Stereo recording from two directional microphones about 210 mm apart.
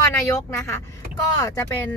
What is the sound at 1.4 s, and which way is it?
Speech, 15° left (ahead or behind).